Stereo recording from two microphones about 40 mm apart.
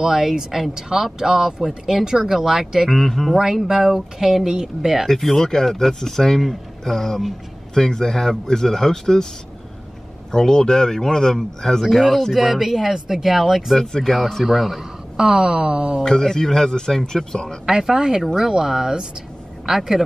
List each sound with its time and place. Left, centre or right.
0.0 s speech: centre
2.9 s speech: centre
3.6 s speech: centre
5.0 s speech: centre
10.3 s speech: centre
11.9 s speech: centre
13.7 s speech: centre
15.1 s speech: centre
16.0 s speech: centre
17.6 s a man's voice: centre